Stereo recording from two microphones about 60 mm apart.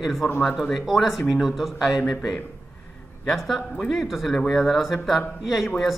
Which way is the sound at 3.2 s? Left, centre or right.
Centre.